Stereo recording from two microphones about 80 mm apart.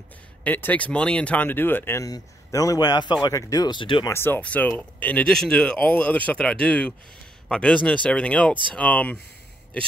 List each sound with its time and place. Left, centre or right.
0.4 s speech: left
2.0 s speech: left
3.3 s speech: left
3.6 s speech: left
4.1 s speech: left
5.3 s speech: centre